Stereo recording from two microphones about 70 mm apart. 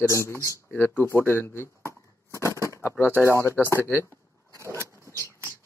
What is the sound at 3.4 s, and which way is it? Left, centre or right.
Speech, left.